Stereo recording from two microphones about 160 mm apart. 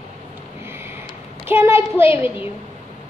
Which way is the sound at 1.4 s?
15° right (ahead or behind).